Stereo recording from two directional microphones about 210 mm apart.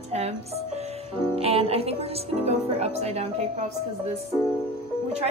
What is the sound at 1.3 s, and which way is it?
Speech, 30° right (ahead or behind).